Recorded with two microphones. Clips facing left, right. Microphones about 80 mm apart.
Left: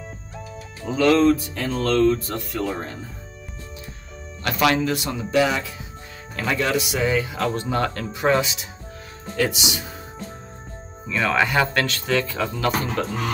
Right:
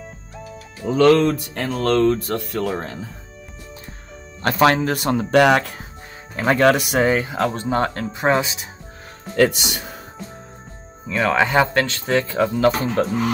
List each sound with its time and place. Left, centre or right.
0.8 s speech: right
4.4 s speech: right
6.4 s speech: right
9.4 s speech: right
11.1 s speech: right